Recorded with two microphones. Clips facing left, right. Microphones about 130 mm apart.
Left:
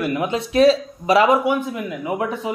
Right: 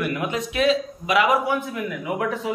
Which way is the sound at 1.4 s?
20° left (ahead or behind).